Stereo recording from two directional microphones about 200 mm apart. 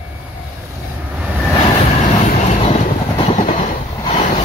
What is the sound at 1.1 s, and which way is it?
Vehicle, 5° right (ahead or behind).